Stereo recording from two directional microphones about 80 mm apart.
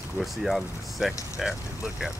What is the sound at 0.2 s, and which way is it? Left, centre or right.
Speech, centre.